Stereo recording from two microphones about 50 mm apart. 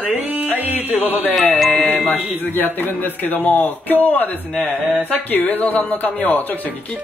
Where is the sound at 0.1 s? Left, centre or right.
Right.